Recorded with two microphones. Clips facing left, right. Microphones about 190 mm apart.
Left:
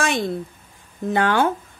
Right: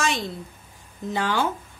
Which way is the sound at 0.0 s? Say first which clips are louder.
Left 4 dB; 55° left (ahead or behind).